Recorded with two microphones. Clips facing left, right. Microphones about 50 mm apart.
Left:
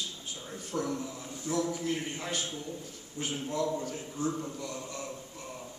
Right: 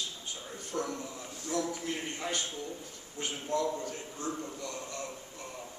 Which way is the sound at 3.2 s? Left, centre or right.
Right.